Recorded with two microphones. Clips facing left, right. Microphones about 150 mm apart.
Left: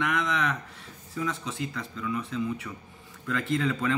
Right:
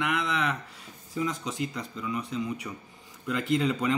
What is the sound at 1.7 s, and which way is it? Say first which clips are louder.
Speech: left 1 dB; 15° right (ahead or behind).